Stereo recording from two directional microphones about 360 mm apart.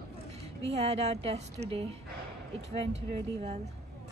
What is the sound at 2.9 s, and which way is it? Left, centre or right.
Speech, centre.